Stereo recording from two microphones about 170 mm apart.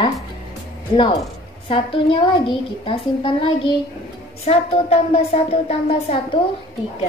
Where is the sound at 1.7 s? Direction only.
30° left (ahead or behind).